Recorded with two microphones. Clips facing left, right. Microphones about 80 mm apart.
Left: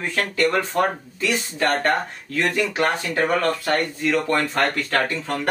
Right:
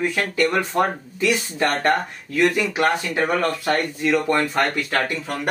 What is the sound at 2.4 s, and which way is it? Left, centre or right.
Speech, centre.